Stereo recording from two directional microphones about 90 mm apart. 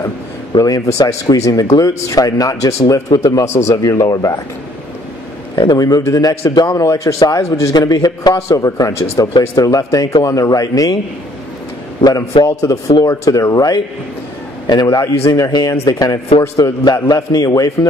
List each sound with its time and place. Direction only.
0.6 s speech: 40° left (ahead or behind)
5.6 s a man's voice: 50° left (ahead or behind)
12.0 s a man's voice: 45° left (ahead or behind)
15.2 s a man's voice: 40° left (ahead or behind)